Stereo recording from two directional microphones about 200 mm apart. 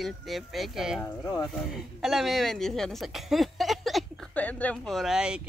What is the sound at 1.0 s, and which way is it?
Speech, 15° left (ahead or behind).